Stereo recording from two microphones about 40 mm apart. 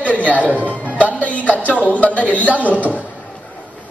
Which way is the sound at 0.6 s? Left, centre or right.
Left.